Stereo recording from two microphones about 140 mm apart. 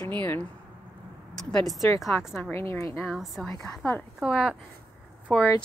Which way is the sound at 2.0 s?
15° left (ahead or behind).